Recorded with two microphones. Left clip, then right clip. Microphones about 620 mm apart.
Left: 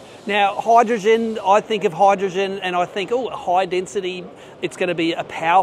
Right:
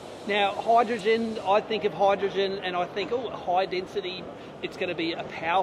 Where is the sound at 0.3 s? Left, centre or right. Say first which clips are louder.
Left 7 dB; left.